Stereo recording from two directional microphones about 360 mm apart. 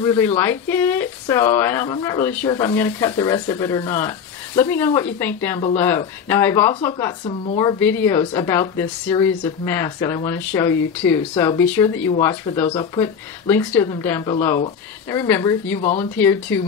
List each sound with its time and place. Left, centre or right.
0.0 s speech: centre
15.8 s speech: centre
16.2 s speech: centre